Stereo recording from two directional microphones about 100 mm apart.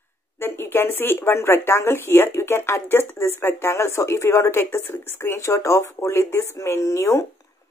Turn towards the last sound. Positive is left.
turn(degrees=30)  # may be behind; listen again after turning